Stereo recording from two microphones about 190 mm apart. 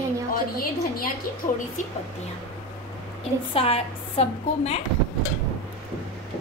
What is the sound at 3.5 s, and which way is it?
A woman's voice, 30° left (ahead or behind).